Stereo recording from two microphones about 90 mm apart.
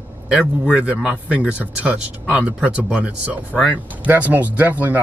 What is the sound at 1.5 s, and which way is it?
Speech, 15° right (ahead or behind).